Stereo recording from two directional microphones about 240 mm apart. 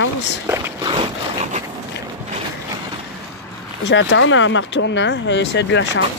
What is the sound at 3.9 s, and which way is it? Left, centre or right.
Speech, left.